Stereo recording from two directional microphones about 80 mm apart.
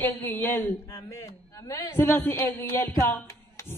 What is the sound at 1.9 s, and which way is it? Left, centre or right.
A man's voice, left.